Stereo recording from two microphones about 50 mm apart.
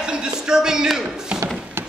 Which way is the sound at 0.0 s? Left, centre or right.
Centre.